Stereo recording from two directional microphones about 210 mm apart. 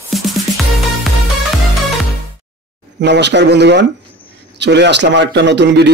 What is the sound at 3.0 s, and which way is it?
A man's voice, 55° right (ahead or behind).